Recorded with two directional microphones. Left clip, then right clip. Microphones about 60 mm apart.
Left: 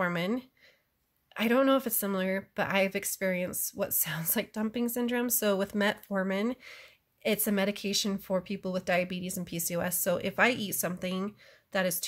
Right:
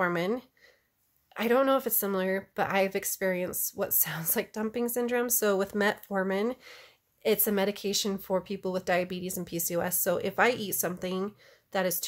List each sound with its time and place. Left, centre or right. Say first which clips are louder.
0.0 s speech: right 2 dB; right
1.3 s speech: right 1 dB; right